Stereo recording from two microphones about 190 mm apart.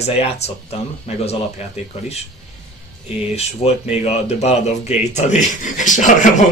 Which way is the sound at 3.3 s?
35° left (ahead or behind).